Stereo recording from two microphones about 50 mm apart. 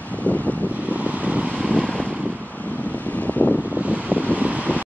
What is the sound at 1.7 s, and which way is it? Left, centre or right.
Vehicle, left.